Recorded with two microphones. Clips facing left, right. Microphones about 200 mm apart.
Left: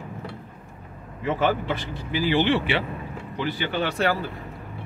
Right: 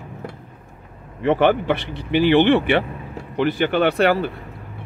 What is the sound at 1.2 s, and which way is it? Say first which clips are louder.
Speech: right 7 dB; 65° right (ahead or behind).